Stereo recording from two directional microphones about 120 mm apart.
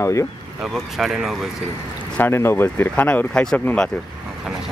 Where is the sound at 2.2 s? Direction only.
20° left (ahead or behind).